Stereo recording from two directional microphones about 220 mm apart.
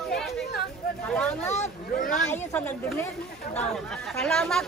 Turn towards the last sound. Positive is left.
turn(degrees=0)  # may be behind; listen again after turning